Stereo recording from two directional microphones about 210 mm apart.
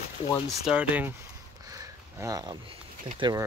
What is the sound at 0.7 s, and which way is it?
Speech, 5° right (ahead or behind).